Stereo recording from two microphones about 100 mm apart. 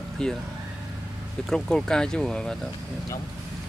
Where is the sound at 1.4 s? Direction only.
5° left (ahead or behind).